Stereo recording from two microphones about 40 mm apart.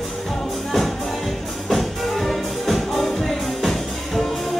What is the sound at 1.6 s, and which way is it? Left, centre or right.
Music, centre.